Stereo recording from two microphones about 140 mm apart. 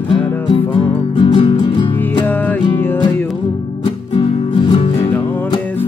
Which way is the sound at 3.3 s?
40° left (ahead or behind).